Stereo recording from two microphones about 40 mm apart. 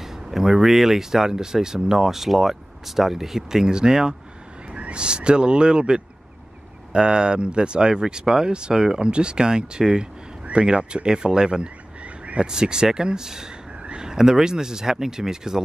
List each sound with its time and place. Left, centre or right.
0.0 s speech: centre